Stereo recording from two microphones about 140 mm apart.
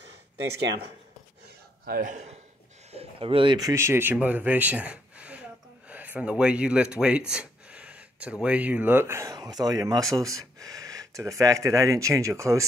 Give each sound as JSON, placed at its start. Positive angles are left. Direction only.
{"t": 1.9, "sound": "a man's voice", "side_deg": -70}
{"t": 2.9, "sound": "speech", "side_deg": -45}
{"t": 3.5, "sound": "a man's voice", "side_deg": -20}